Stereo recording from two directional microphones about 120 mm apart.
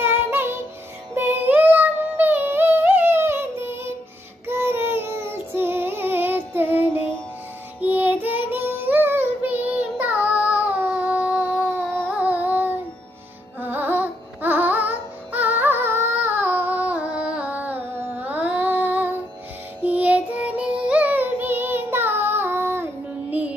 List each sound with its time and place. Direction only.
0.0 s music: 20° right (ahead or behind)
4.5 s child singing: 20° right (ahead or behind)
12.1 s music: 10° right (ahead or behind)
19.8 s child singing: 10° right (ahead or behind)